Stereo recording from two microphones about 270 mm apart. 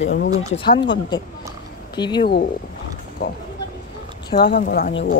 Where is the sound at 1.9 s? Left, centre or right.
Centre.